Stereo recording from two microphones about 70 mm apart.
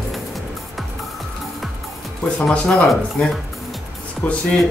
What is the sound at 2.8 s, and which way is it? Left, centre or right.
Speech, centre.